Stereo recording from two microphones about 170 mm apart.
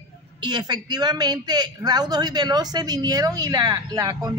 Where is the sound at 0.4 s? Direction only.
25° right (ahead or behind).